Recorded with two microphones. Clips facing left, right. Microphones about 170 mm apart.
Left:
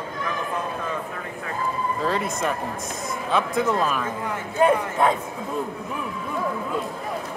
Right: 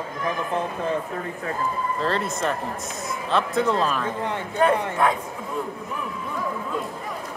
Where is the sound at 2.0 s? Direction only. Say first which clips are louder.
Even; 5° left (ahead or behind).